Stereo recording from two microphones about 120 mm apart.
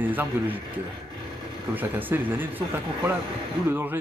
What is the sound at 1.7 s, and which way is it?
Speech, 15° right (ahead or behind).